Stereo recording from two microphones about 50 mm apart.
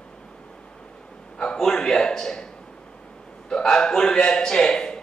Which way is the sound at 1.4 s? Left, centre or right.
Centre.